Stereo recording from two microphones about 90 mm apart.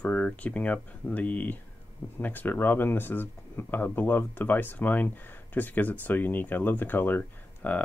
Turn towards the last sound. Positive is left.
turn(degrees=20)  # may be behind; listen again after turning